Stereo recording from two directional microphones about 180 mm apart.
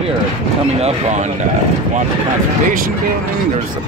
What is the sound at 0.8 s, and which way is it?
Speech, 40° right (ahead or behind).